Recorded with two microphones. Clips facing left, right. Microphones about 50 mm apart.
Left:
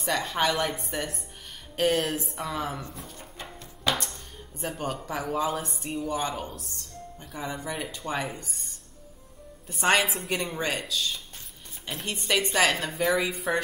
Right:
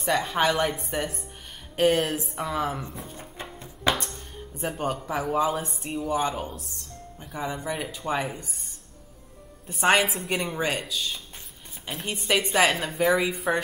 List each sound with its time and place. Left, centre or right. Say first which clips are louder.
0.0 s a woman's voice: right 3 dB; centre
3.1 s music: right 3 dB; centre
3.9 s a woman's voice: right 1 dB; centre
9.7 s a woman's voice: right 2 dB; centre